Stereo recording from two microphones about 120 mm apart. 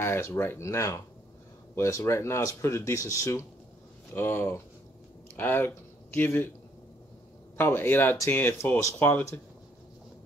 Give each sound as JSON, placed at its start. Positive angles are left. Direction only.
{"t": 0.0, "sound": "a man's voice", "side_deg": 20}
{"t": 7.5, "sound": "speech", "side_deg": 20}